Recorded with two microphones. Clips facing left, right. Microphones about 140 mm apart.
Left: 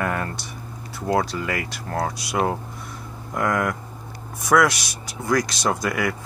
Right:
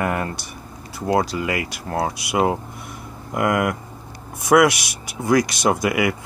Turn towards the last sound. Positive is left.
turn(degrees=-10)  # may be behind; listen again after turning